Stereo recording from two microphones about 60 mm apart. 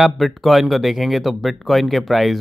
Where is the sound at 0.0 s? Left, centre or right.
Centre.